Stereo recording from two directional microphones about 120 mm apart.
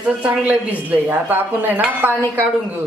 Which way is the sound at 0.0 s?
10° right (ahead or behind).